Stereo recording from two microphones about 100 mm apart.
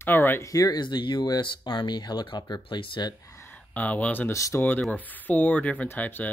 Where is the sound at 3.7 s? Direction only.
15° left (ahead or behind).